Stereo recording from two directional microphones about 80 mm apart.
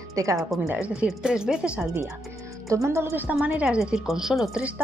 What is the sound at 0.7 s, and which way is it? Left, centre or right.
A woman's voice, centre.